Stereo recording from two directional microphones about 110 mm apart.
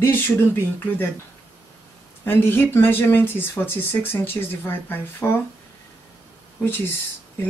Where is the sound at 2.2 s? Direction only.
20° left (ahead or behind).